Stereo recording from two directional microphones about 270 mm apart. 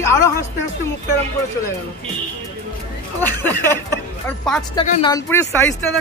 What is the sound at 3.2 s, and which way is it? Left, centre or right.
Speech, centre.